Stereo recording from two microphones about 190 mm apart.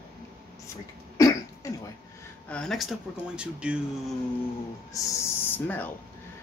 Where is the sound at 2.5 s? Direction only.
5° left (ahead or behind).